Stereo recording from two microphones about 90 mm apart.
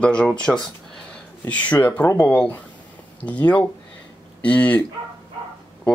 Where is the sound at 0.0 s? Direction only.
10° left (ahead or behind).